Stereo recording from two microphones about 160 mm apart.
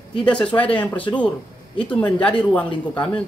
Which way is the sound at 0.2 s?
5° left (ahead or behind).